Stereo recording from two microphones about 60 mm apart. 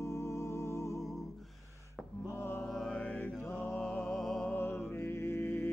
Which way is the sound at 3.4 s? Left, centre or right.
Left.